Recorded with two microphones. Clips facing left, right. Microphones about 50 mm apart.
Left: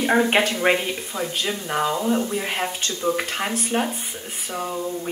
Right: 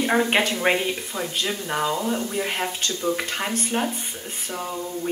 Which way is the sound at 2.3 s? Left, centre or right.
Centre.